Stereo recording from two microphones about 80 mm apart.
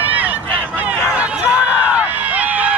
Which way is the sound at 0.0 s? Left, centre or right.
Right.